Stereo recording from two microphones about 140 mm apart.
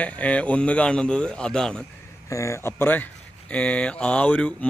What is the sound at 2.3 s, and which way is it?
Speech, 20° left (ahead or behind).